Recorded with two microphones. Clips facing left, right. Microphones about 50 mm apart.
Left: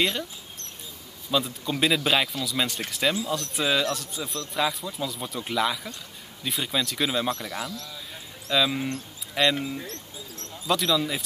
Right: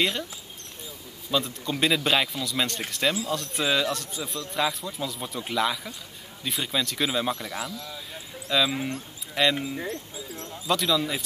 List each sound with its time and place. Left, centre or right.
0.0 s speech: centre
1.3 s speech: centre
7.7 s speech: centre
8.1 s a sound: centre
9.3 s speech: centre
9.8 s speech: centre
10.7 s speech: centre